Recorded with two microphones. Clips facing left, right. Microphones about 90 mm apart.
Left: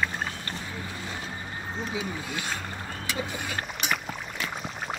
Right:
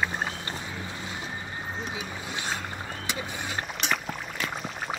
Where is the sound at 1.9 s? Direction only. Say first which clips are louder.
Left 3 dB; 20° right (ahead or behind).